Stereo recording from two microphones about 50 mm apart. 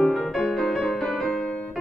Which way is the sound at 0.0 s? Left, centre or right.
Centre.